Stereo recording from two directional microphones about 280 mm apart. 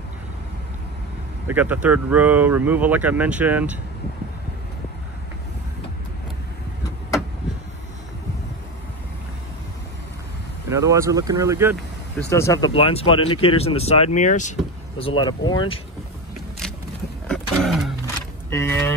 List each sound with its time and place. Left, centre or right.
1.5 s speech: centre
10.7 s speech: centre
12.3 s speech: centre
17.3 s roaring cats: centre
18.5 s speech: centre